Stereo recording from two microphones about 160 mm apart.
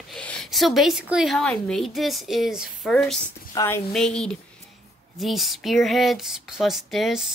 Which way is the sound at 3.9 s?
5° left (ahead or behind).